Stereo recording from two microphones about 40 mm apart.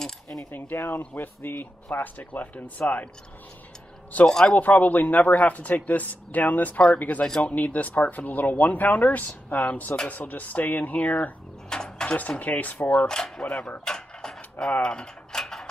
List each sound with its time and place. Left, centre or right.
0.0 s a sound: centre
0.5 s speech: left
4.3 s speech: centre
4.6 s a man's voice: left
11.7 s a sound: centre
12.2 s a man's voice: left
12.9 s speech: left
13.5 s a man's voice: left
13.8 s mechanisms: centre
15.4 s mechanisms: centre